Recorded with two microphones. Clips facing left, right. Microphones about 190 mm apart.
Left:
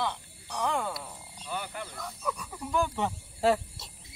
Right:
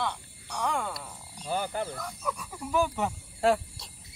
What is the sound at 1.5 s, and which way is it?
Speech, 35° right (ahead or behind).